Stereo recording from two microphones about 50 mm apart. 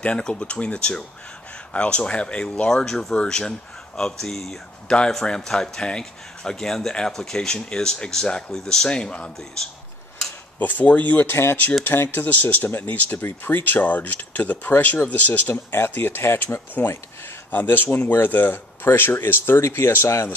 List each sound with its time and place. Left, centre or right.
0.2 s speech: left
10.6 s speech: left
11.2 s speech: left
11.8 s speech: left
15.7 s speech: left